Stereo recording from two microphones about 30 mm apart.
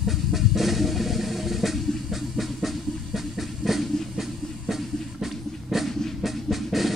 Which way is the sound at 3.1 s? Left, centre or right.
Centre.